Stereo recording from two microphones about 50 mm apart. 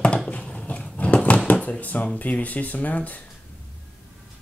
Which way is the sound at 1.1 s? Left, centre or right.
Left.